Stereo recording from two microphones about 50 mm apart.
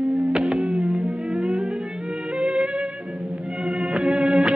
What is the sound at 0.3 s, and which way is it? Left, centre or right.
Music, centre.